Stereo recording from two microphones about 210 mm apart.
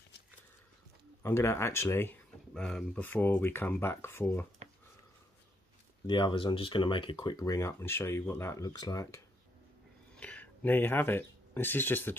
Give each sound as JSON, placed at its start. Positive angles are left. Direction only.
{"t": 1.2, "sound": "speech", "side_deg": 10}
{"t": 6.0, "sound": "speech", "side_deg": 20}